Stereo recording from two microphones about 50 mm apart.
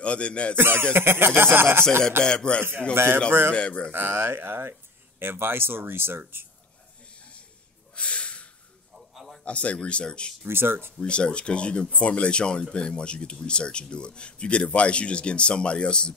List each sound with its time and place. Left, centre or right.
0.0 s speech: left
0.6 s speech: right
2.2 s speech: centre
2.9 s speech: right
3.5 s speech: left
3.9 s speech: right
7.2 s a sound: left
7.9 s snort: left
8.9 s a sound: centre
9.4 s speech: left
10.4 s speech: right
11.0 s speech: centre